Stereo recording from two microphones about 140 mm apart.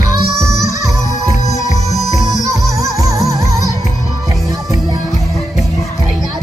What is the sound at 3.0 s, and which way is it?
Music, 25° right (ahead or behind).